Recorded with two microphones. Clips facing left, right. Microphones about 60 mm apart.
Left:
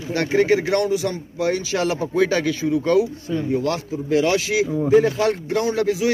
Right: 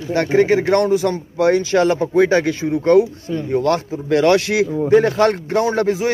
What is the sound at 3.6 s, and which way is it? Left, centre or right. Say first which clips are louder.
Speech: right 5 dB; right.